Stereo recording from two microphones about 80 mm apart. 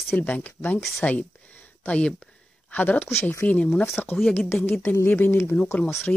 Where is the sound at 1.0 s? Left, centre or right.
Centre.